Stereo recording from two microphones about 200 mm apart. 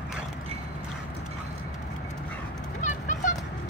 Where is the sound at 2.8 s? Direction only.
40° left (ahead or behind).